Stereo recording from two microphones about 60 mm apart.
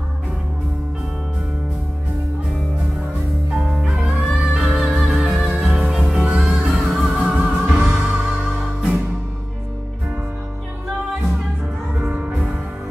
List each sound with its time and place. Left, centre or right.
3.5 s music: centre
12.1 s music: centre